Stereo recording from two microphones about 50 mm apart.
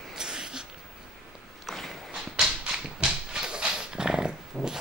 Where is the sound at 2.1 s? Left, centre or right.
Centre.